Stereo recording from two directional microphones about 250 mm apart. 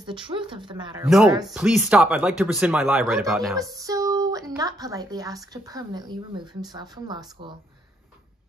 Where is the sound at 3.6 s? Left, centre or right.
Centre.